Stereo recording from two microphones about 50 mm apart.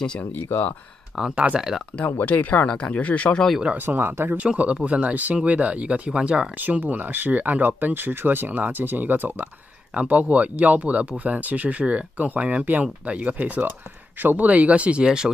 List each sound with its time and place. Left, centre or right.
0.2 s speech: left
1.3 s speech: right
2.1 s speech: left
3.7 s speech: right
4.4 s speech: right
6.6 s speech: right
9.9 s speech: right